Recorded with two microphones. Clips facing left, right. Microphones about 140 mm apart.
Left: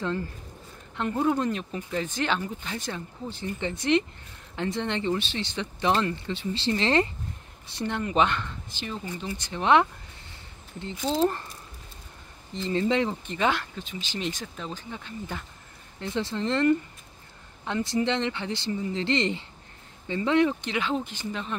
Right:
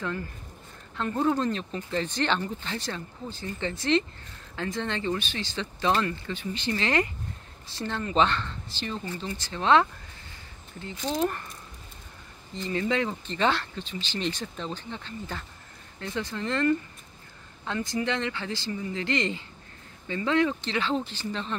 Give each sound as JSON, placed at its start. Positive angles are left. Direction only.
{"t": 0.9, "sound": "speech", "side_deg": 15}
{"t": 11.1, "sound": "speech", "side_deg": 25}
{"t": 12.6, "sound": "speech", "side_deg": 25}
{"t": 16.2, "sound": "speech", "side_deg": 25}